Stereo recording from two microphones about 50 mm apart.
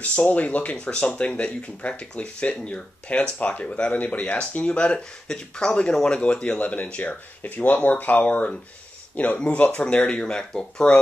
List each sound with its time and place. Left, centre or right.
0.0 s speech: left